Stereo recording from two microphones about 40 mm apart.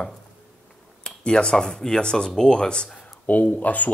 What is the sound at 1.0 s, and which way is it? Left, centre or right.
Speech, left.